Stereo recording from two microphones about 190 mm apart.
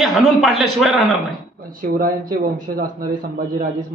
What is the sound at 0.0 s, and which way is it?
A man's voice, centre (ahead or behind).